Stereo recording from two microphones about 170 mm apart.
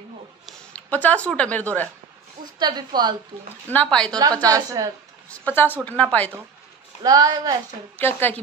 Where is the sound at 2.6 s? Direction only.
25° right (ahead or behind).